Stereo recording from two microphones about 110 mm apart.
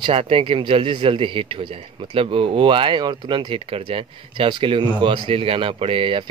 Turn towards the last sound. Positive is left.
turn(degrees=-50)  # may be behind; listen again after turning